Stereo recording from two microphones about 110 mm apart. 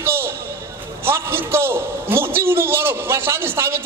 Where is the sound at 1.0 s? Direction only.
20° right (ahead or behind).